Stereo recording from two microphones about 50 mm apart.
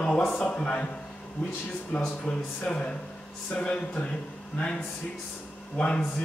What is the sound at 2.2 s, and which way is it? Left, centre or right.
Speech, left.